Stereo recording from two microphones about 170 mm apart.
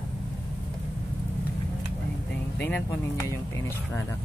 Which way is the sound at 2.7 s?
15° left (ahead or behind).